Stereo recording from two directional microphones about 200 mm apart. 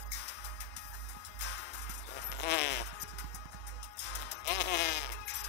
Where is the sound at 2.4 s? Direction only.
55° left (ahead or behind).